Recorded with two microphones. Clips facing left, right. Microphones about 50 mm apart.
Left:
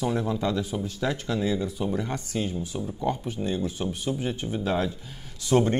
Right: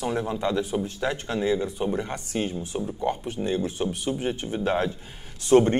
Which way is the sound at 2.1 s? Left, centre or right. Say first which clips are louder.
Right 1 dB; right.